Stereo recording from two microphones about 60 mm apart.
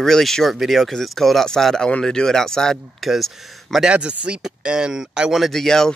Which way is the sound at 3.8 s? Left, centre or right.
Centre.